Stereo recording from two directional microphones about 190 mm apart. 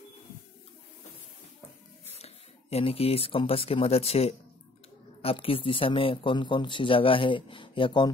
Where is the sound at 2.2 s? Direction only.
30° left (ahead or behind).